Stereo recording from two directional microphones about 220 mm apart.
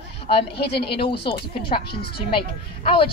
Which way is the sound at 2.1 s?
25° left (ahead or behind).